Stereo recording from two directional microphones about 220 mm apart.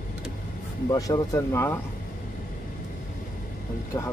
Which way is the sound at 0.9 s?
15° left (ahead or behind).